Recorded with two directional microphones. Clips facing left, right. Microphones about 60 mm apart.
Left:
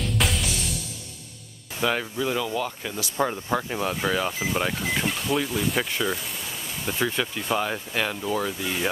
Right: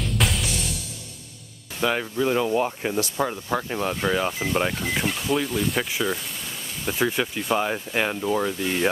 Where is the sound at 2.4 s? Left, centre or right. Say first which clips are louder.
Right 5 dB; right.